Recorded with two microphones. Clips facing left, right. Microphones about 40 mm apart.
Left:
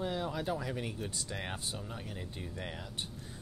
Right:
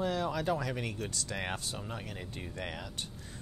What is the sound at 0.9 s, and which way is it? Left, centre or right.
Speech, right.